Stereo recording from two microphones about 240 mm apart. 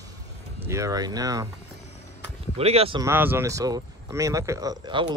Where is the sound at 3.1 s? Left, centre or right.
Centre.